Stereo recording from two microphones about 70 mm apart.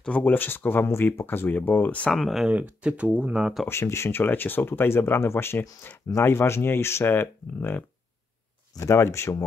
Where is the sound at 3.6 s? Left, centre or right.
Left.